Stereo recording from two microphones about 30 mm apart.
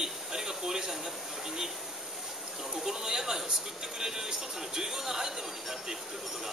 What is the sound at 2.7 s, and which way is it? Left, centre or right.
A man's voice, centre.